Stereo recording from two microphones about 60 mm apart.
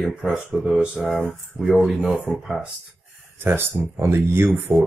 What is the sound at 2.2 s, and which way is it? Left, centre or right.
Speech, centre.